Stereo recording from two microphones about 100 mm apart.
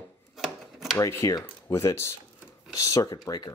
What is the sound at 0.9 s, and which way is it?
Speech, 35° left (ahead or behind).